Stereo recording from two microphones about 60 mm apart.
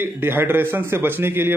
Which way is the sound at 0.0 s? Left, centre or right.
Right.